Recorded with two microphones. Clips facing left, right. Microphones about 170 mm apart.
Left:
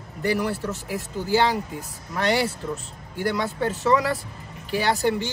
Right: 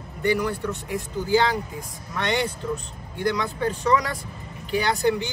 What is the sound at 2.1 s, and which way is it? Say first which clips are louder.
Speech: left 3 dB; 35° left (ahead or behind).